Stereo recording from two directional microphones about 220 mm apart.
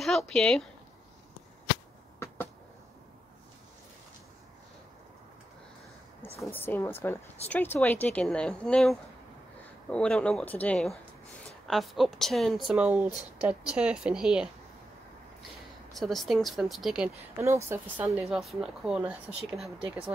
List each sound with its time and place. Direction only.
0.0 s speech: centre (ahead or behind)
6.4 s speech: 10° left (ahead or behind)
15.9 s speech: centre (ahead or behind)
17.4 s speech: 15° right (ahead or behind)